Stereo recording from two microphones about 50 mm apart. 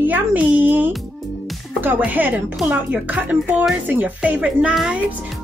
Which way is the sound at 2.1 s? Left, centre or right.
Right.